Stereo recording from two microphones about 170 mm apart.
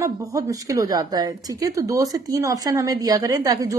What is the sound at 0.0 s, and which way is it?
A woman's voice, 20° right (ahead or behind).